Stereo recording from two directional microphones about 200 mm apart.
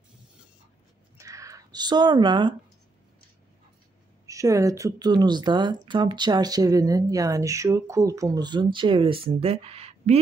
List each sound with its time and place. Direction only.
1.1 s zipper: 15° right (ahead or behind)
4.3 s speech: 15° right (ahead or behind); by 10.1 s 30° right (ahead or behind)